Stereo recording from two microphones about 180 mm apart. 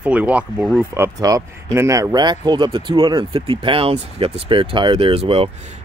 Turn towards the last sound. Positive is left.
turn(degrees=-30)  # may be behind; listen again after turning